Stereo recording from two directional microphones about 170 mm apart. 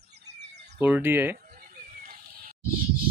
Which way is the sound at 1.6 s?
60° right (ahead or behind).